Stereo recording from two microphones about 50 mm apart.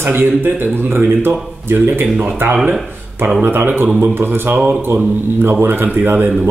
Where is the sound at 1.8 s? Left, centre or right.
Right.